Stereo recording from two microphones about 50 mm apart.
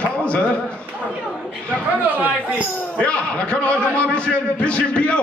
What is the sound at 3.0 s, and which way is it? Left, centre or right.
A man's voice, left.